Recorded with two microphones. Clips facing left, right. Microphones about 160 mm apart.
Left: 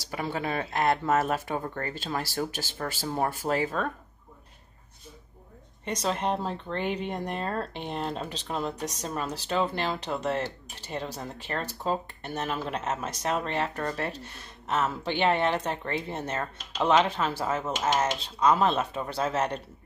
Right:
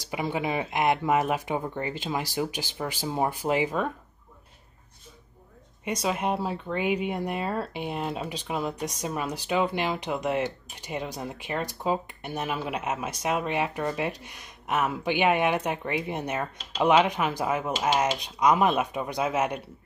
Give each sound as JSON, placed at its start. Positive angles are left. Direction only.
{"t": 0.1, "sound": "speech", "side_deg": -15}
{"t": 5.9, "sound": "speech", "side_deg": -10}